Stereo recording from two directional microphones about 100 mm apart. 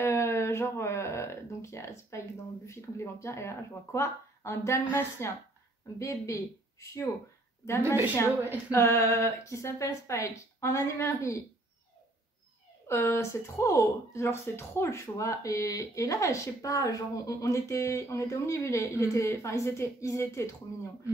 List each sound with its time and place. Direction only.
0.0 s speech: 25° left (ahead or behind)
7.8 s a woman's voice: 20° right (ahead or behind)
8.7 s speech: 25° left (ahead or behind)
12.8 s speech: 25° left (ahead or behind)